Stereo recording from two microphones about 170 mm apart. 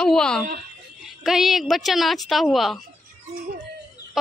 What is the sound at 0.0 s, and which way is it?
A woman's voice, 5° left (ahead or behind).